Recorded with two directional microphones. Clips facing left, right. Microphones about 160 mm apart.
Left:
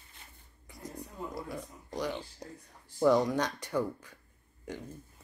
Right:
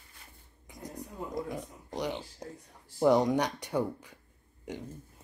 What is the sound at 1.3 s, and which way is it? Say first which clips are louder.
Speech: right 4 dB; 20° right (ahead or behind).